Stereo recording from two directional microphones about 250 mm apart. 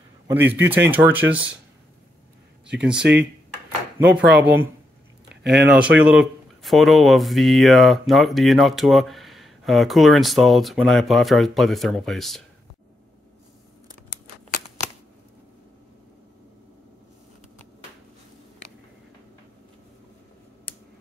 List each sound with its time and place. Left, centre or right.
0.3 s speech: centre
2.8 s speech: centre
5.3 s a sound: right
5.7 s speech: centre